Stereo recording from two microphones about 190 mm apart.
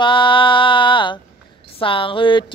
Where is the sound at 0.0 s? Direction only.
25° left (ahead or behind).